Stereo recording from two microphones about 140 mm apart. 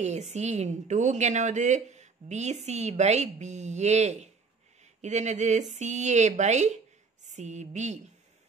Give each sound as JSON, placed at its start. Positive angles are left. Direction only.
{"t": 0.0, "sound": "a woman's voice", "side_deg": -55}